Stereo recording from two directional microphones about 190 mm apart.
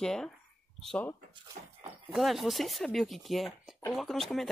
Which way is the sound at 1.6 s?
45° right (ahead or behind).